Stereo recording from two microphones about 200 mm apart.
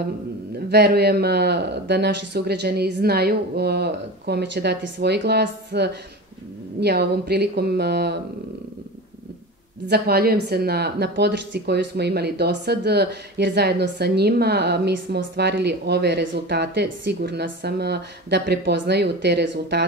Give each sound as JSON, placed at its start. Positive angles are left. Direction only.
{"t": 0.7, "sound": "a woman's voice", "side_deg": -55}
{"t": 9.8, "sound": "a woman's voice", "side_deg": -50}